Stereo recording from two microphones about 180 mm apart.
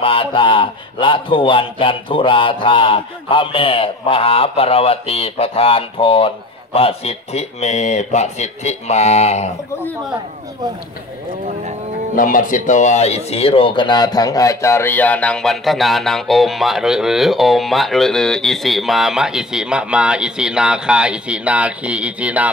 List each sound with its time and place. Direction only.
0.0 s speech: 30° left (ahead or behind)
12.2 s speech: 50° left (ahead or behind); by 22.5 s 5° right (ahead or behind)